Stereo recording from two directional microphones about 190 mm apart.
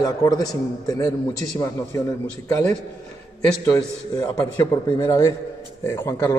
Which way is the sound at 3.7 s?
15° left (ahead or behind).